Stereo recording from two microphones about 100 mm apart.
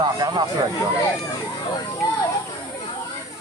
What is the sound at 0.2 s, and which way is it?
Speech, 45° right (ahead or behind).